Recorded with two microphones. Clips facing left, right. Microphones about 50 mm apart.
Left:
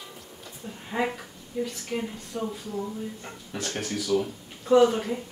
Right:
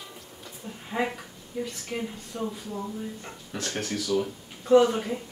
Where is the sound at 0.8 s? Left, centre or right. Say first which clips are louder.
Left 1 dB; centre.